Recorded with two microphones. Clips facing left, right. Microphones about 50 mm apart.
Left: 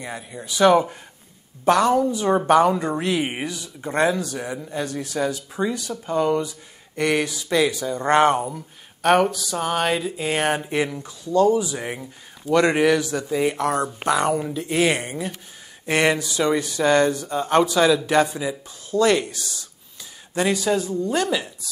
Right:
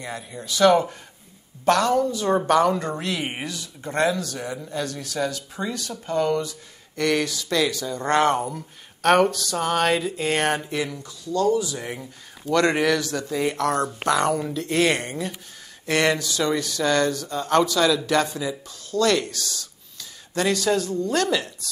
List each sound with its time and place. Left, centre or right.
0.0 s a woman's voice: centre
10.7 s a woman's voice: left